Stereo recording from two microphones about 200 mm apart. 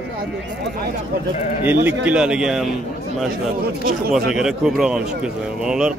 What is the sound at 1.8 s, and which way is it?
Speech, 5° right (ahead or behind).